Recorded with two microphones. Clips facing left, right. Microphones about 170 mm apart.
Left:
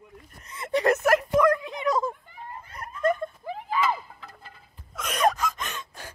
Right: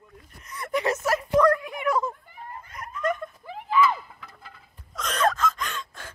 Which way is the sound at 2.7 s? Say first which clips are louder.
Left 3 dB; 30° left (ahead or behind).